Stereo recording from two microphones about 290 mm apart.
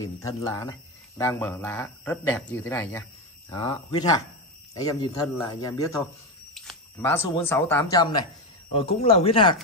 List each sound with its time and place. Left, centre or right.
0.2 s speech: centre
6.5 s a sound: centre
7.4 s speech: centre